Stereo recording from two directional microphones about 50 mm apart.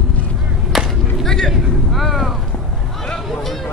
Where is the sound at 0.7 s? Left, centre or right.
Centre.